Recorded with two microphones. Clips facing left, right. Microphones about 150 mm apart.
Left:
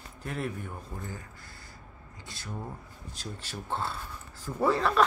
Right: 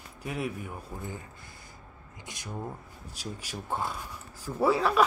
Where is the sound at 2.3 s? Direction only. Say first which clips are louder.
Right 2 dB; 20° right (ahead or behind).